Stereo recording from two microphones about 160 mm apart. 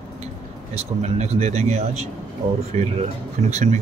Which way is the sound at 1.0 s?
40° right (ahead or behind).